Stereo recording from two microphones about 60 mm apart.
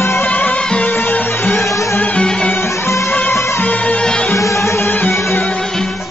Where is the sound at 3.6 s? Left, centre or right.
Left.